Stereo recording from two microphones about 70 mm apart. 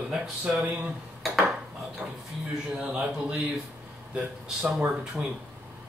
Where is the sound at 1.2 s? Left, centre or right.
Centre.